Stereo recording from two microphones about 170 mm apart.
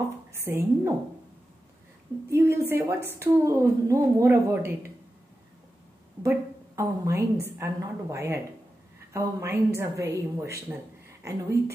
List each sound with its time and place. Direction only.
0.3 s a woman's voice: 15° right (ahead or behind)
2.2 s a woman's voice: 15° right (ahead or behind)
6.2 s a woman's voice: 20° right (ahead or behind)